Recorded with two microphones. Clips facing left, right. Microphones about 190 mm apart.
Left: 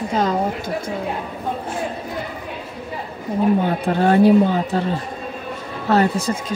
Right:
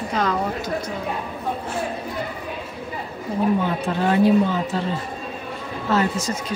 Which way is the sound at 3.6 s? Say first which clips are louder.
Left 4 dB; 45° left (ahead or behind).